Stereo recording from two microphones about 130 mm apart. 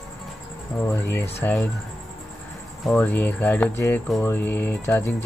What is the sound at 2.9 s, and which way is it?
Speech, 10° left (ahead or behind).